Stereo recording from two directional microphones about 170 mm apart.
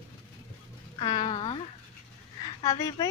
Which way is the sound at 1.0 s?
30° left (ahead or behind).